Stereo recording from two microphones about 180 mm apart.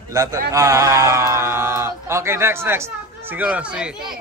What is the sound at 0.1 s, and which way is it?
Speech, 15° right (ahead or behind).